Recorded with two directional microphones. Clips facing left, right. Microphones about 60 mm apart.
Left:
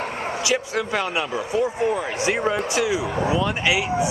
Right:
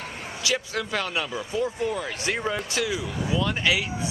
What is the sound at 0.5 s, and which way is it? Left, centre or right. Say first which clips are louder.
Speech: left 3 dB; left.